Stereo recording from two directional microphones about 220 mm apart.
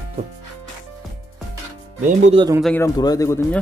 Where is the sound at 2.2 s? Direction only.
25° right (ahead or behind).